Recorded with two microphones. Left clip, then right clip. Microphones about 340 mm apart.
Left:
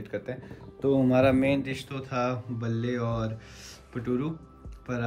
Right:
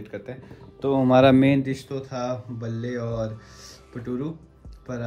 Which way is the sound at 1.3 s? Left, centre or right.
Right.